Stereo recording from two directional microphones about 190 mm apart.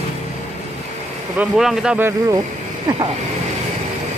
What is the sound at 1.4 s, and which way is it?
Speech, 5° right (ahead or behind).